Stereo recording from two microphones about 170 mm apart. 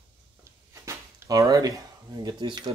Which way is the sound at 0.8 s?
20° right (ahead or behind).